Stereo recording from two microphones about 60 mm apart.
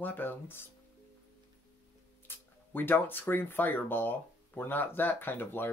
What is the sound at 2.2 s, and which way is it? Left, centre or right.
Speech, left.